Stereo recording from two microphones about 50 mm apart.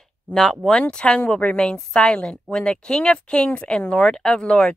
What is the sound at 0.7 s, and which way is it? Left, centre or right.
A woman's voice, left.